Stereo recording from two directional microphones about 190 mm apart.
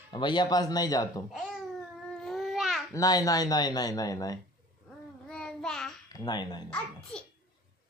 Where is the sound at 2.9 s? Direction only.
20° left (ahead or behind).